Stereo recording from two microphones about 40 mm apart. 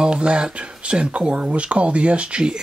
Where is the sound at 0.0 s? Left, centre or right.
Right.